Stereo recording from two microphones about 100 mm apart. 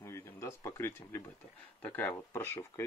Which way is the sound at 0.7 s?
25° left (ahead or behind).